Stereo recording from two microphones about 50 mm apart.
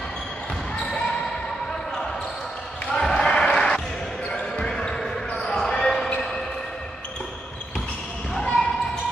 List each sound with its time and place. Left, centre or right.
0.7 s basketball bounce: left
2.9 s basketball bounce: centre
8.4 s basketball bounce: centre